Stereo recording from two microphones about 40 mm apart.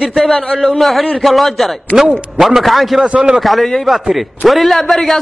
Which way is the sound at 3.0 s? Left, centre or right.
Right.